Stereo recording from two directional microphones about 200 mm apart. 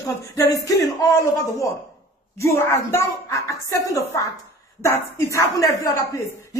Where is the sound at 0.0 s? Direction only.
15° left (ahead or behind).